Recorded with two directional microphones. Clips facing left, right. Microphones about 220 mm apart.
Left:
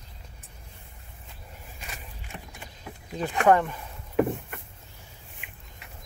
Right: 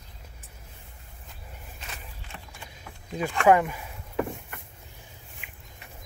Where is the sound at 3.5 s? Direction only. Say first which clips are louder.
Right 1 dB; 10° right (ahead or behind).